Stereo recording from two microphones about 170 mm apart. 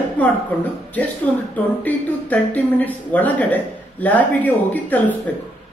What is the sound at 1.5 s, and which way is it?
Speech, 10° left (ahead or behind).